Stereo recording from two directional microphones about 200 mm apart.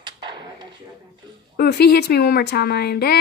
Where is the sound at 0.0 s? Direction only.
25° right (ahead or behind).